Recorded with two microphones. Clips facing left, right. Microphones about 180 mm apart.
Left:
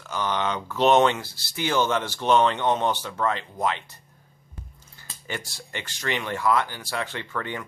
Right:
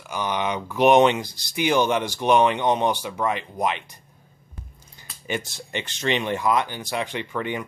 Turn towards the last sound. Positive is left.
turn(degrees=-15)  # may be behind; listen again after turning